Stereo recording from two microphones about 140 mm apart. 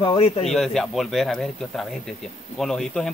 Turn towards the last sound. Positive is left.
turn(degrees=5)  # may be behind; listen again after turning